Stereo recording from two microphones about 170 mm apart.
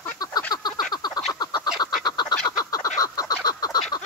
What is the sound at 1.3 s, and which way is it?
Duck, 25° left (ahead or behind).